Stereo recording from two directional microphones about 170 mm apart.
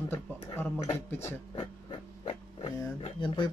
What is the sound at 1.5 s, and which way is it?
Speech, 30° left (ahead or behind).